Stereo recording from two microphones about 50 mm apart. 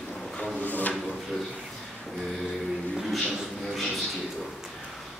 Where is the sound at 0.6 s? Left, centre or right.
Left.